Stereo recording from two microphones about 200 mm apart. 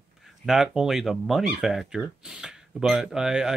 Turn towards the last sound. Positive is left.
turn(degrees=-5)  # may be behind; listen again after turning